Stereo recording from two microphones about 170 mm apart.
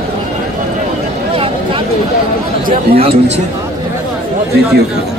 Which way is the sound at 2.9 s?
35° right (ahead or behind).